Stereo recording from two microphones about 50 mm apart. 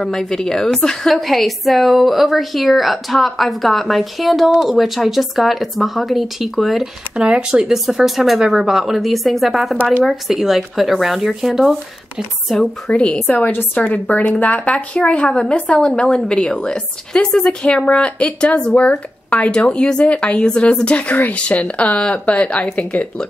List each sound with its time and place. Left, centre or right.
0.0 s a woman's voice: centre
7.2 s a woman's voice: centre
13.4 s a woman's voice: left